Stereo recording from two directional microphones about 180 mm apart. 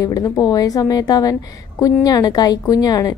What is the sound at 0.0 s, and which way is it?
A woman's voice, 20° left (ahead or behind).